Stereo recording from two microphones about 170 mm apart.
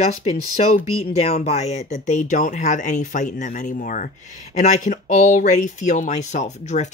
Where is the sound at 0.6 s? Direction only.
40° left (ahead or behind).